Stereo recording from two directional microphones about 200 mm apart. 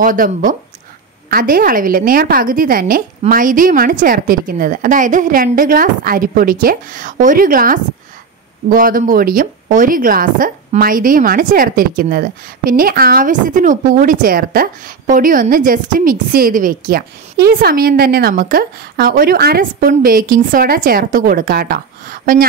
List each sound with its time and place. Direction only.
0.0 s a woman's voice: 45° right (ahead or behind)